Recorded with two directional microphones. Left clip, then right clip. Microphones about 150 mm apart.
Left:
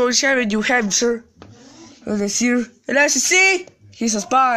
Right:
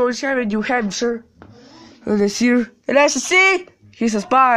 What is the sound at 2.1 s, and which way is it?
Speech, 10° right (ahead or behind).